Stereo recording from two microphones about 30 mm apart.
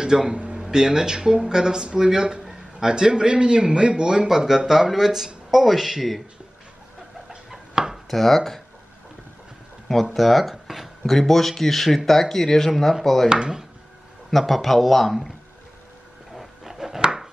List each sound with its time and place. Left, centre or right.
0.0 s speech: right
0.4 s a sound: right
0.7 s a man's voice: centre
4.5 s speech: centre
7.2 s a sound: centre
8.1 s speech: centre
10.1 s a man's voice: centre
11.1 s speech: centre
13.3 s a man's voice: right
14.3 s a man's voice: centre
16.6 s chopping: centre